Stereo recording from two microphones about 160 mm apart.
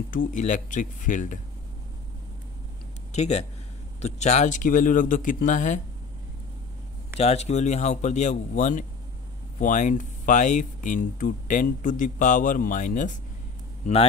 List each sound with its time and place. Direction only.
0.1 s speech: 55° left (ahead or behind)
3.1 s speech: 45° left (ahead or behind)
7.2 s speech: 40° left (ahead or behind)